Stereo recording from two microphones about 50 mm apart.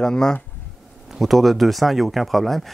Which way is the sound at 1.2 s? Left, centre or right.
Centre.